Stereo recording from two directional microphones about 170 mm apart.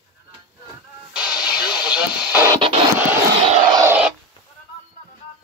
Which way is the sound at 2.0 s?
25° left (ahead or behind).